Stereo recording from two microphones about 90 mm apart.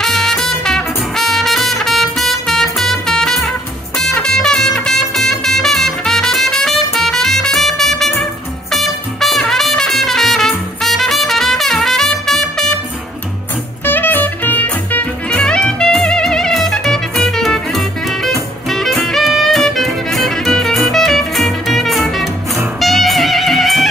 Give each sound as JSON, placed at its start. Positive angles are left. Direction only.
{"t": 0.0, "sound": "music", "side_deg": 5}
{"t": 13.8, "sound": "music", "side_deg": 20}